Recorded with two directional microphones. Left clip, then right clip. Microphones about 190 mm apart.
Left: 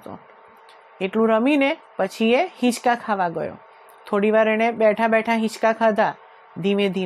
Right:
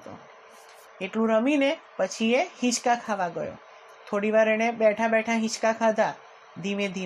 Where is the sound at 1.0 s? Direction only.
40° left (ahead or behind).